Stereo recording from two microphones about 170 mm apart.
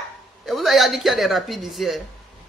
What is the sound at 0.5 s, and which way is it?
Speech, centre (ahead or behind).